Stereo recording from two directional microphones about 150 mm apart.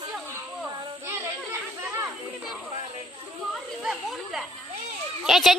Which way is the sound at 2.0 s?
5° right (ahead or behind).